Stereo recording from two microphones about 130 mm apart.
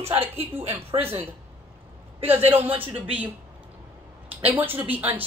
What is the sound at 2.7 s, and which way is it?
Speech, 45° right (ahead or behind).